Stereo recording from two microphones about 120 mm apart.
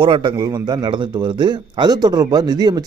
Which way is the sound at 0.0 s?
45° right (ahead or behind).